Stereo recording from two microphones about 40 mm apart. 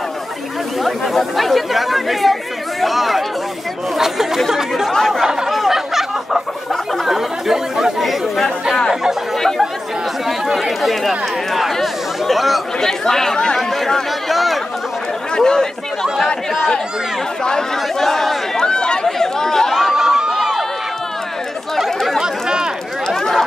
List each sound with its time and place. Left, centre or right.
0.8 s speech: centre
4.5 s speech: centre
5.5 s fowl: centre
7.1 s speech: centre
10.2 s speech: centre
12.8 s speech: centre
15.3 s speech: centre
17.5 s speech: centre
18.6 s chatter: left
19.0 s speech: centre
19.7 s crowd: centre
21.7 s speech: centre
22.2 s speech: centre
23.0 s a sound: centre